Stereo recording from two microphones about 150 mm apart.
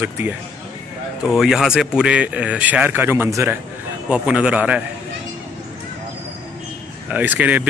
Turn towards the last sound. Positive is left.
turn(degrees=-10)  # may be behind; listen again after turning